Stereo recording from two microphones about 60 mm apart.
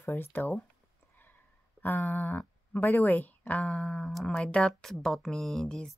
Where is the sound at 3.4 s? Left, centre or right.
Left; by 5.7 s centre.